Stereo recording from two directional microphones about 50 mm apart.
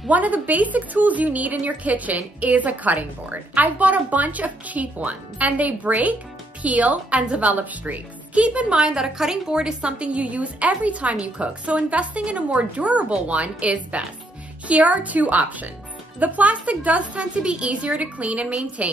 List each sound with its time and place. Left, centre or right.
0.1 s a woman's voice: right
8.7 s a woman's voice: centre